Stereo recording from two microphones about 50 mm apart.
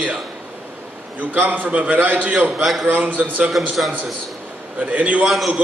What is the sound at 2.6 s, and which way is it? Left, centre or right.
Speech, centre.